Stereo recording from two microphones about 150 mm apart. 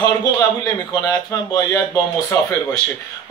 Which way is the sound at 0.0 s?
25° left (ahead or behind).